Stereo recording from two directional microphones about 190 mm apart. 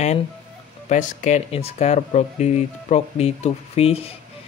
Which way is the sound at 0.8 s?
40° left (ahead or behind).